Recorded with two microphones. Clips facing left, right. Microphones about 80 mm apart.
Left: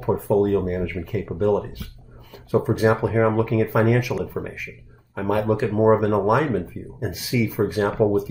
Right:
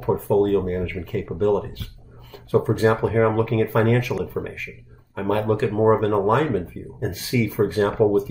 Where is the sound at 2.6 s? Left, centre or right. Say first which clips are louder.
Left 1 dB; centre.